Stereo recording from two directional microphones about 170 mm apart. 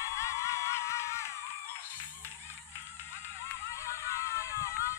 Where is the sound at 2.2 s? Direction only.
15° left (ahead or behind).